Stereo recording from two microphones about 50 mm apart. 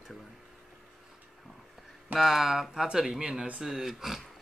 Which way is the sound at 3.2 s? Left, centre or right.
Right.